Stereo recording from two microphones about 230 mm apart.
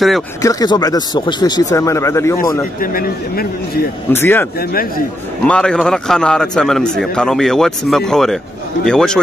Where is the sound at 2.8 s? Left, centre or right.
Left.